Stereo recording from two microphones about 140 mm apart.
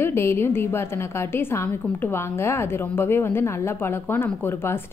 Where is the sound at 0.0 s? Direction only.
15° left (ahead or behind).